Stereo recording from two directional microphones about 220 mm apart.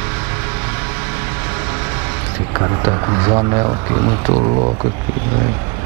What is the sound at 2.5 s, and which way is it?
Speech, 15° right (ahead or behind).